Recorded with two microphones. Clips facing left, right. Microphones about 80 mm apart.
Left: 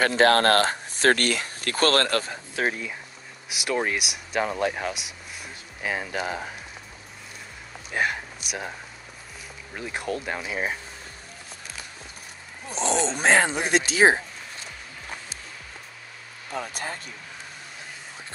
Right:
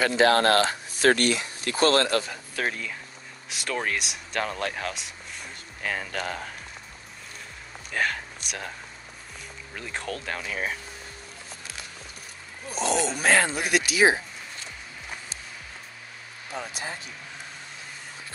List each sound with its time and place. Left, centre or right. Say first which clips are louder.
0.0 s speech: left 1 dB; left
2.5 s speech: left 3 dB; centre
7.9 s a sound: left 1 dB; centre
9.8 s speech: left 4 dB; centre
12.8 s speech: left 1 dB; left
16.5 s speech: left 2 dB; left